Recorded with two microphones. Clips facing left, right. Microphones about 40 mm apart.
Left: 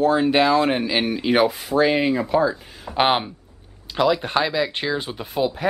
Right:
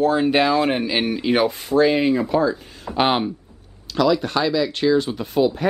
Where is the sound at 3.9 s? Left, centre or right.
Left.